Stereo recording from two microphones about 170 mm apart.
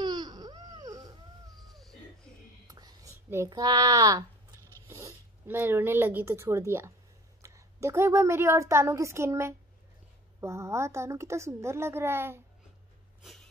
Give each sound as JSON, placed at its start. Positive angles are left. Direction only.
{"t": 0.0, "sound": "baby cry", "side_deg": -25}
{"t": 1.7, "sound": "cat", "side_deg": 0}
{"t": 2.7, "sound": "whispering", "side_deg": -20}
{"t": 4.8, "sound": "a woman's voice", "side_deg": -15}
{"t": 13.2, "sound": "snort", "side_deg": 0}